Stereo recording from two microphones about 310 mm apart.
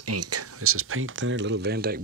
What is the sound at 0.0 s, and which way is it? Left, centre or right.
Speech, right.